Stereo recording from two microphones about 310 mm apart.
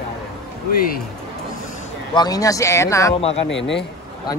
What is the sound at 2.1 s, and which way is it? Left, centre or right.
Speech, centre.